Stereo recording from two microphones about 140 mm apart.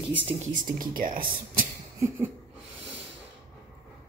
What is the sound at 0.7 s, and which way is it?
Speech, 80° right.